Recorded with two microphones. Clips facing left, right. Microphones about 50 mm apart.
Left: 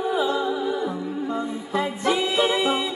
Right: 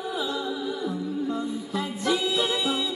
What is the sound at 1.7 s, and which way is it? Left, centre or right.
Music, left.